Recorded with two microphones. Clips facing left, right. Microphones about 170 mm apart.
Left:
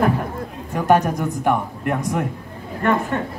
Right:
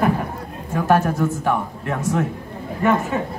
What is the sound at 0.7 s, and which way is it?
Speech, 15° left (ahead or behind).